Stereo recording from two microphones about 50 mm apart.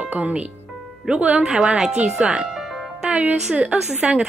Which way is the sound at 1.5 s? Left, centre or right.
Centre.